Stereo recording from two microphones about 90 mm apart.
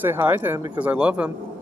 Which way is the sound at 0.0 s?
25° right (ahead or behind).